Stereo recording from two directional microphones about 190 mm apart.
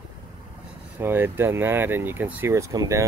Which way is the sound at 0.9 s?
10° right (ahead or behind).